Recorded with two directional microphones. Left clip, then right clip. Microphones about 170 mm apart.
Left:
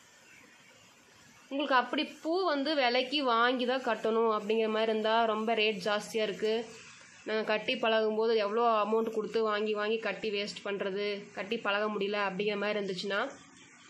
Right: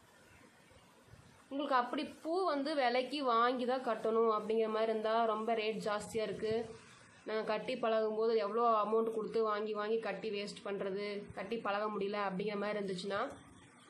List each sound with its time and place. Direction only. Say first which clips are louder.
1.5 s speech: left 5 dB; 30° left (ahead or behind)